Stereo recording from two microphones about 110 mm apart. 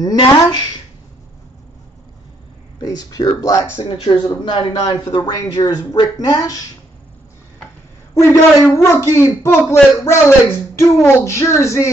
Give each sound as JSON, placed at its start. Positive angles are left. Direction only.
{"t": 0.2, "sound": "a man's voice", "side_deg": 40}
{"t": 2.8, "sound": "speech", "side_deg": 35}
{"t": 3.7, "sound": "speech", "side_deg": 55}
{"t": 4.5, "sound": "a man's voice", "side_deg": 45}
{"t": 8.1, "sound": "speech", "side_deg": 25}